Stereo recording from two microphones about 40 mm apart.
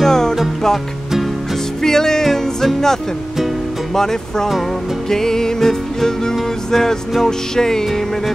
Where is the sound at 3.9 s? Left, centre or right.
Centre.